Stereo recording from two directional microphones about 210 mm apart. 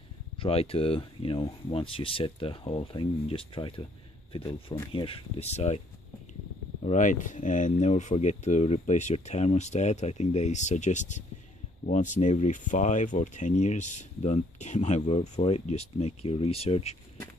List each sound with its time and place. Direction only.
0.4 s speech: 30° left (ahead or behind)
6.8 s speech: 35° left (ahead or behind)